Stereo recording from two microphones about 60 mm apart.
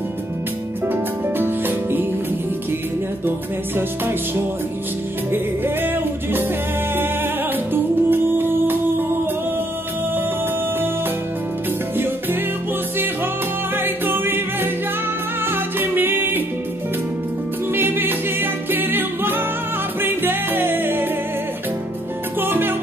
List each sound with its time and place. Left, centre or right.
0.9 s music: right
3.3 s music: right
5.3 s music: right
7.7 s music: right
13.7 s music: right
17.7 s music: right
22.4 s music: right